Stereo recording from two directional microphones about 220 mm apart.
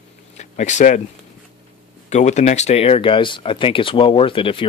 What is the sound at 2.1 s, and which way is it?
Speech, 30° left (ahead or behind).